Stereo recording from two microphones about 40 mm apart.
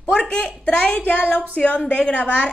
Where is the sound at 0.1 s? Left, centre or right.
Left.